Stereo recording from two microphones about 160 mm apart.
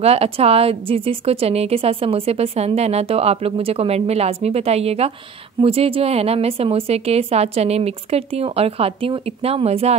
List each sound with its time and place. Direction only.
0.0 s a woman's voice: 40° right (ahead or behind)